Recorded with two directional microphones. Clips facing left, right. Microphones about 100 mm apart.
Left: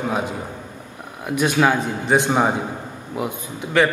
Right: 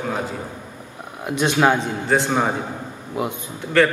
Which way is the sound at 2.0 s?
15° left (ahead or behind).